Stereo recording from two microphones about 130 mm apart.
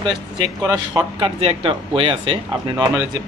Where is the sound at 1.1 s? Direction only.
45° right (ahead or behind).